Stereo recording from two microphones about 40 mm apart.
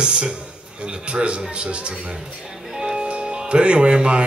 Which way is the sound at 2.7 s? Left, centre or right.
Centre.